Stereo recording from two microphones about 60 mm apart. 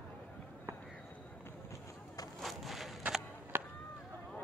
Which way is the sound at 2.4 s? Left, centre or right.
Centre.